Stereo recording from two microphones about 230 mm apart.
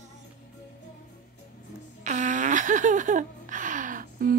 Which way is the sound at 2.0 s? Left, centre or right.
Right.